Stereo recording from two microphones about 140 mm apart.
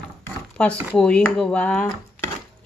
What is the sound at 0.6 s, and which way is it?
Speech, 5° left (ahead or behind).